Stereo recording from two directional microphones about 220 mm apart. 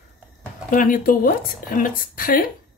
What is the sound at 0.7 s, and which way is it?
A woman's voice, 40° left (ahead or behind).